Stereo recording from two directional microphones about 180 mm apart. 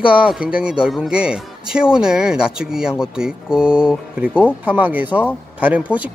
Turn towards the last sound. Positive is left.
turn(degrees=-10)  # may be behind; listen again after turning